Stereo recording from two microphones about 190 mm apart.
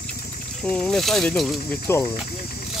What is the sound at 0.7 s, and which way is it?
Speech, 5° left (ahead or behind).